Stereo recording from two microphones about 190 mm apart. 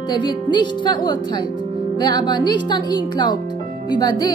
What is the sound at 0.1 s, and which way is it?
Speech, 25° left (ahead or behind).